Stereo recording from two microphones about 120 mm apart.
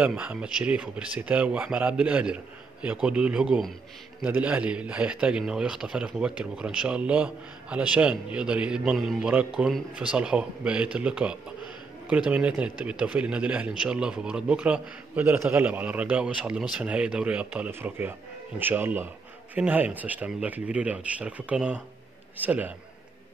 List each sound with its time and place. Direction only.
0.0 s a man's voice: 10° right (ahead or behind)